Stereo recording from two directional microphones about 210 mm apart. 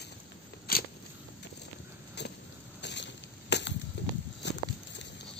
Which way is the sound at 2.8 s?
55° left (ahead or behind).